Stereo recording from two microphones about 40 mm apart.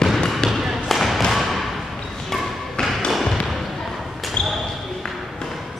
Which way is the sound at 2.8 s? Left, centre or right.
Centre.